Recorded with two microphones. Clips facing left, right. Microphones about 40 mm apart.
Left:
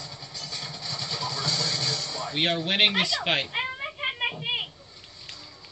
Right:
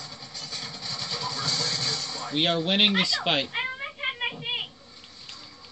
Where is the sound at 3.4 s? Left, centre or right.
Centre.